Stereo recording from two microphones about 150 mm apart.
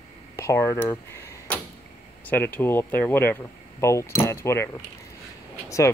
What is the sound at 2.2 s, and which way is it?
Speech, 15° left (ahead or behind).